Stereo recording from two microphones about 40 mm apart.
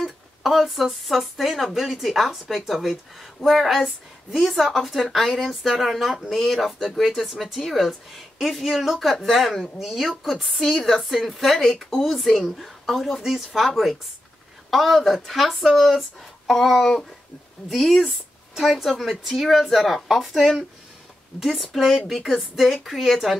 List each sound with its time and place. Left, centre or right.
0.0 s speech: centre